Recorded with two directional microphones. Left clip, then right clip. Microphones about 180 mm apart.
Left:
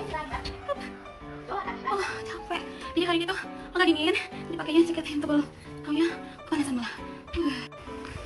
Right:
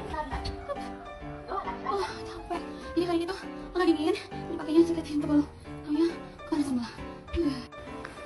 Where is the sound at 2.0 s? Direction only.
Centre (ahead or behind).